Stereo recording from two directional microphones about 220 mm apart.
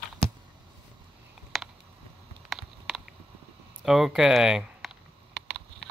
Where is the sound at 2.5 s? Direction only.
Centre (ahead or behind).